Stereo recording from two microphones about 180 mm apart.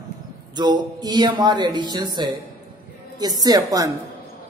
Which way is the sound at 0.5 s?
25° right (ahead or behind).